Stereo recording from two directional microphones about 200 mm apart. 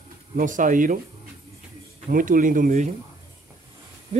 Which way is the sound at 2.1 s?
40° right (ahead or behind).